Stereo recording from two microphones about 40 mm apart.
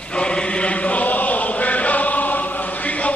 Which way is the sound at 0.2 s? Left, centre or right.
Left.